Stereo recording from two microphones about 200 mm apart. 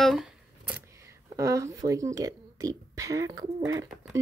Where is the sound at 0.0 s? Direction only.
Centre (ahead or behind).